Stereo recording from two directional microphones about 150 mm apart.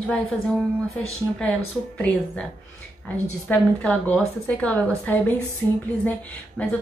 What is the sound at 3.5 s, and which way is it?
A woman's voice, 10° left (ahead or behind).